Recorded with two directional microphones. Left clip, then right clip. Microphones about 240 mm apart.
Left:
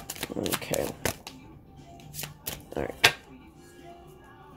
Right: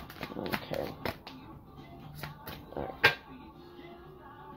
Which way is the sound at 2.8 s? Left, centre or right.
Left.